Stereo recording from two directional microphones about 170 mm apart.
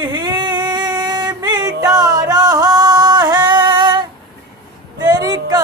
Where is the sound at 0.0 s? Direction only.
25° right (ahead or behind).